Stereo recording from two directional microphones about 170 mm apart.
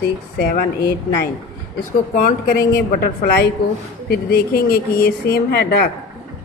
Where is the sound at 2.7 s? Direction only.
65° left (ahead or behind).